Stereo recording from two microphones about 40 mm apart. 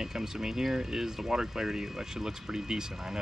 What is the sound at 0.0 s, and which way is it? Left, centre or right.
Speech, centre.